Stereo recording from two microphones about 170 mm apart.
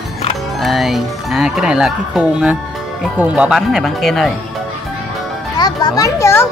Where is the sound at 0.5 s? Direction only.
Centre (ahead or behind).